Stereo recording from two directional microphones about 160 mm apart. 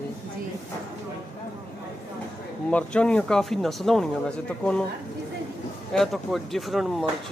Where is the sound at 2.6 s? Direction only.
5° left (ahead or behind).